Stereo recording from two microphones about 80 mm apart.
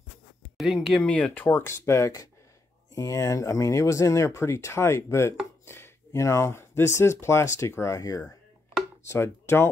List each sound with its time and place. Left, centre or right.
0.6 s speech: centre
1.0 s speech: centre
1.5 s speech: left
9.0 s speech: left